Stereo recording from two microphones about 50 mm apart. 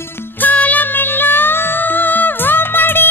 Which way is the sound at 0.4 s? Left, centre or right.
Left.